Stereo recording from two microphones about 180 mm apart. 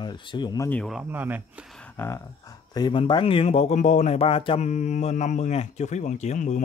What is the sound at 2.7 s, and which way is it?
Speech, 25° left (ahead or behind).